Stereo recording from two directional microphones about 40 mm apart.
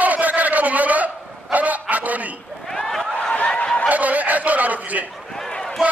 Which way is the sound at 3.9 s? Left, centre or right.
Right.